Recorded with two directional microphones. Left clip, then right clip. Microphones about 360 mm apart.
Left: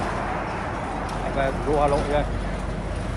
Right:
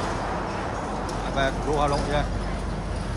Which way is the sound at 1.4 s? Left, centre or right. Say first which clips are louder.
Left 2 dB; centre.